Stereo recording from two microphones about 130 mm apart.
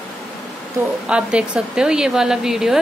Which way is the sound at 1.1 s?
10° right (ahead or behind).